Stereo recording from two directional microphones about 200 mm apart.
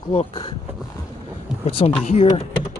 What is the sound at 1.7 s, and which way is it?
Speech, 25° left (ahead or behind).